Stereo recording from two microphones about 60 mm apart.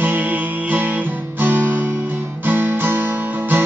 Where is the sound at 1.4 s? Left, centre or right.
Right.